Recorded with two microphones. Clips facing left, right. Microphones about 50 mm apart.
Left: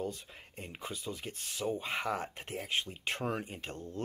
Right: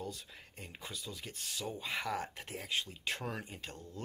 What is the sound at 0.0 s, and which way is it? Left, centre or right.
Speech, left.